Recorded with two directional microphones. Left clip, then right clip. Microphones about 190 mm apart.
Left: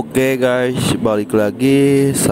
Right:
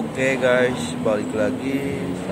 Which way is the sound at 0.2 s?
45° left (ahead or behind).